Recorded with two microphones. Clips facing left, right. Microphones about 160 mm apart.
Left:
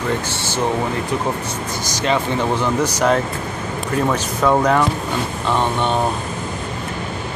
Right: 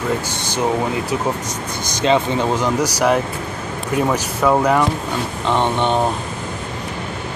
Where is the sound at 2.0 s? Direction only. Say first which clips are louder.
Right 3 dB; 15° right (ahead or behind).